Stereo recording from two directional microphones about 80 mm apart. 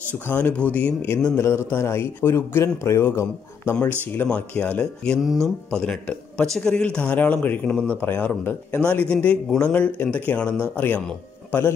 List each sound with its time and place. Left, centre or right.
0.3 s speech: left
1.0 s a man's voice: left
4.3 s speech: centre